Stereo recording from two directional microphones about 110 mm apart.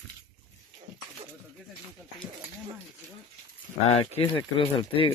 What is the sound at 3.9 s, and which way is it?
Speech, 65° left (ahead or behind).